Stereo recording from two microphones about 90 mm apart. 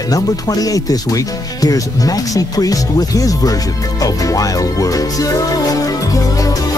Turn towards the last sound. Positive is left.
turn(degrees=40)  # may be behind; listen again after turning